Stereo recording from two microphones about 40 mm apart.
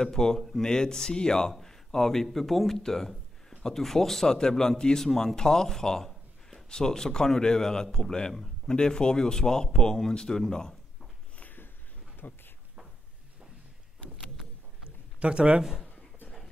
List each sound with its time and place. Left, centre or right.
0.0 s a man's voice: centre
11.3 s a sound: left
12.2 s speech: left
15.1 s speech: right